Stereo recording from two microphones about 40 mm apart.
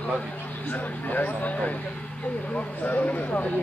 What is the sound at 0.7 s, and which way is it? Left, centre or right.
Speech, left.